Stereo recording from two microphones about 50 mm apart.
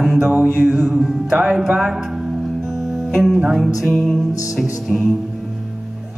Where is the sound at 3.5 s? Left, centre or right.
Centre.